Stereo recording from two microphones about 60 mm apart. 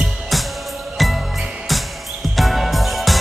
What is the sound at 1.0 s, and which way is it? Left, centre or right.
Jingle bell, centre.